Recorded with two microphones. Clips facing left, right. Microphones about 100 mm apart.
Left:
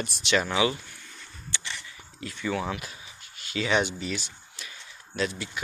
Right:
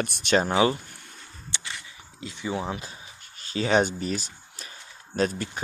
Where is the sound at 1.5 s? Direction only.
20° right (ahead or behind).